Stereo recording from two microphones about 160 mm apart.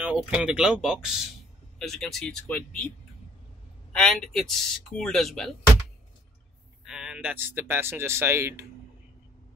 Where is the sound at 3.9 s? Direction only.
Centre (ahead or behind).